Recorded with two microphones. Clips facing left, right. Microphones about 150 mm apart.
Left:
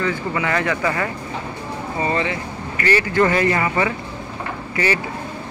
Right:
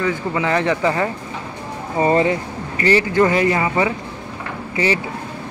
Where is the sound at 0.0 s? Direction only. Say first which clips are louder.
Right 2 dB; 20° right (ahead or behind).